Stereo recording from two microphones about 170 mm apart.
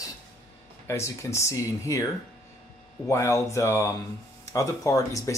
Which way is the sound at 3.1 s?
15° left (ahead or behind).